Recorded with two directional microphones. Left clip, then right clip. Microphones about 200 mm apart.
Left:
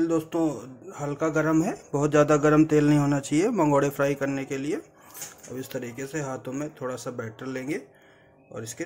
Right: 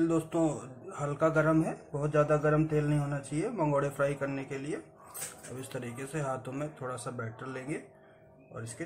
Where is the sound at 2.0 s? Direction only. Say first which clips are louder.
Left 7 dB; 50° left (ahead or behind).